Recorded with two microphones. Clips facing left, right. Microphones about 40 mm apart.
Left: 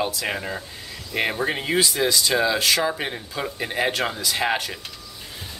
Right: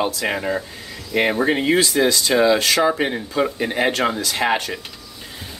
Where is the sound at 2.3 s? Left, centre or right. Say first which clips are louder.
Right 5 dB; centre.